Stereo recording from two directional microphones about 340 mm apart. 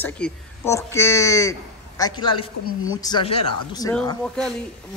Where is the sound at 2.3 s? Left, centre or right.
Left.